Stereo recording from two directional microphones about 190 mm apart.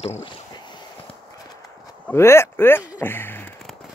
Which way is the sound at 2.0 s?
15° left (ahead or behind).